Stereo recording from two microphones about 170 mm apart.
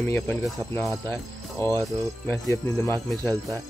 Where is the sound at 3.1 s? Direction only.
5° left (ahead or behind).